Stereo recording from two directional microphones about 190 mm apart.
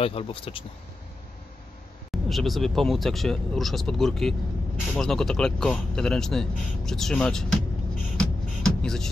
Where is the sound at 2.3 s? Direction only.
Centre (ahead or behind).